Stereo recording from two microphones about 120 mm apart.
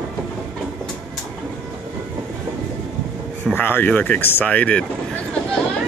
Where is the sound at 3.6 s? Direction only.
15° left (ahead or behind).